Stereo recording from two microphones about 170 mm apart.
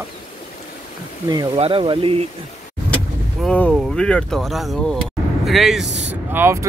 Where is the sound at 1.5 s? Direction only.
35° right (ahead or behind).